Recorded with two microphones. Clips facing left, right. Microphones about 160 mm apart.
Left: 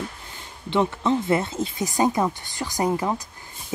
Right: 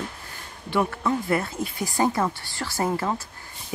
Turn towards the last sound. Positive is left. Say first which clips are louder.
# left 2 dB
turn(degrees=15)  # may be behind; listen again after turning